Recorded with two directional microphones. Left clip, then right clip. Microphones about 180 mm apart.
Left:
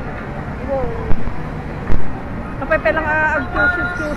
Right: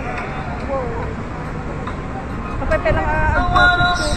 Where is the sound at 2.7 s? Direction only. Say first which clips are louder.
Left 2 dB; 10° left (ahead or behind).